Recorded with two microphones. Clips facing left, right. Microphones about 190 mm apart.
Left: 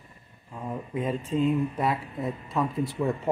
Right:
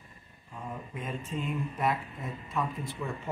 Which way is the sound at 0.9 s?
35° left (ahead or behind).